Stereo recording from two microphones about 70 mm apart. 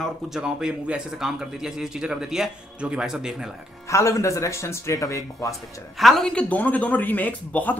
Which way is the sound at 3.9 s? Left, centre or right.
Left.